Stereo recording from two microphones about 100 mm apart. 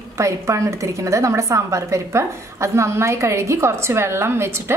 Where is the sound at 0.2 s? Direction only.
30° right (ahead or behind).